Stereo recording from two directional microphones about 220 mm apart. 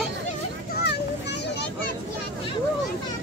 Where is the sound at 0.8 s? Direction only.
50° left (ahead or behind).